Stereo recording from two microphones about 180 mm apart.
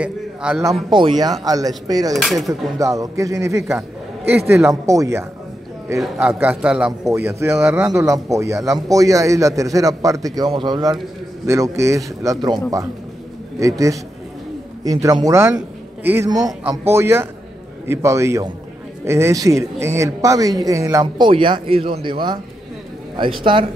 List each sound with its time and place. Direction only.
0.0 s a man's voice: 5° right (ahead or behind)
0.8 s speech: 25° right (ahead or behind)
2.1 s speech: centre (ahead or behind)
2.8 s a man's voice: 15° right (ahead or behind)
7.1 s a man's voice: 15° right (ahead or behind)
13.6 s a man's voice: 20° right (ahead or behind)
16.3 s a man's voice: 20° right (ahead or behind)